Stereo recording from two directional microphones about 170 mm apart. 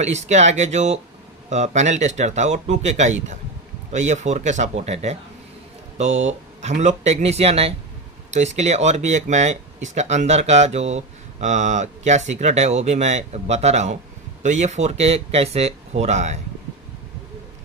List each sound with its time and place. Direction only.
0.0 s speech: 40° right (ahead or behind)